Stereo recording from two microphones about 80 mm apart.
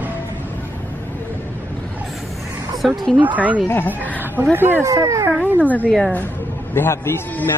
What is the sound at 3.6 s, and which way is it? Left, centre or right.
Speech, left.